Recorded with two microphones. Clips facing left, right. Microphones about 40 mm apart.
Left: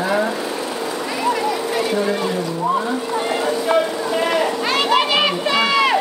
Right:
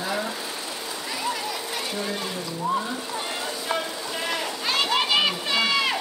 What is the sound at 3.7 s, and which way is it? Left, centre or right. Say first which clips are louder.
Children playing: left 9 dB; left.